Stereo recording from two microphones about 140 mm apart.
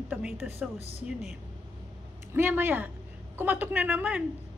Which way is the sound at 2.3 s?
15° right (ahead or behind).